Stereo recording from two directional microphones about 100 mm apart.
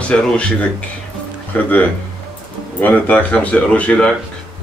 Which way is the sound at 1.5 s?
15° left (ahead or behind).